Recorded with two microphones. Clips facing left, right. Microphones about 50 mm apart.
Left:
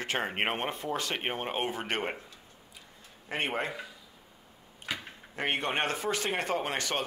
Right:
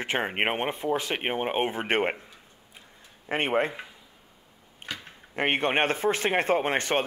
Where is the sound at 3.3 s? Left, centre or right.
Right.